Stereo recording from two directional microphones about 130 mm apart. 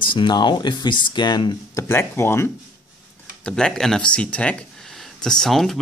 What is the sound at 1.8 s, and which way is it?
Speech, 20° left (ahead or behind).